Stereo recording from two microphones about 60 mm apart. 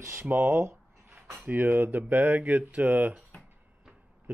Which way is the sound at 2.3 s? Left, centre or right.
Right.